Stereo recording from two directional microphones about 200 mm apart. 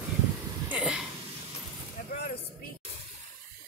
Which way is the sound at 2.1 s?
50° left (ahead or behind).